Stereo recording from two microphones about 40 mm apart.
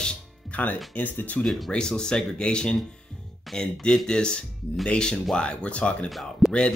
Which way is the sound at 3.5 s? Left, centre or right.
Centre.